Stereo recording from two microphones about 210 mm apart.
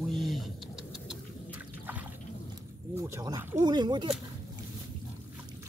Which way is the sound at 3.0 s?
15° right (ahead or behind).